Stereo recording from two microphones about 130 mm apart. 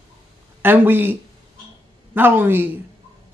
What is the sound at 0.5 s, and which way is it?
Speech, 15° right (ahead or behind).